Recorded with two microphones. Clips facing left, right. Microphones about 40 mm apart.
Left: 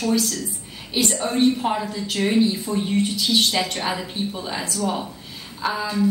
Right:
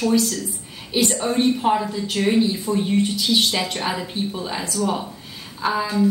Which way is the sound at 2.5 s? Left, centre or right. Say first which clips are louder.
Right 2 dB; centre.